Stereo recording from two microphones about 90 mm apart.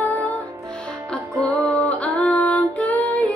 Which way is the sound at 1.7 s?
15° left (ahead or behind).